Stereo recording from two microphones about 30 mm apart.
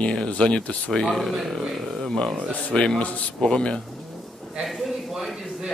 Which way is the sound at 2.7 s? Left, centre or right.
Left.